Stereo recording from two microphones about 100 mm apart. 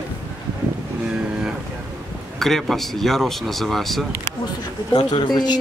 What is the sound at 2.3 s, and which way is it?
Speech, 5° left (ahead or behind).